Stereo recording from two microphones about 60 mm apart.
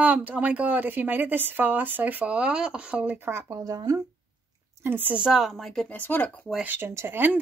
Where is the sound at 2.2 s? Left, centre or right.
Centre.